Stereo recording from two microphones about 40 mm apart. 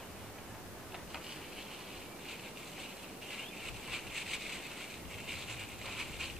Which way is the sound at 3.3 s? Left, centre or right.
Centre.